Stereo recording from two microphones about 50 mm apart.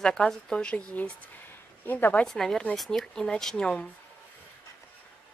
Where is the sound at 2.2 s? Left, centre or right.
Centre.